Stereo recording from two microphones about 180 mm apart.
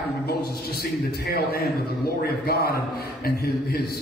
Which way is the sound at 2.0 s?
60° left (ahead or behind).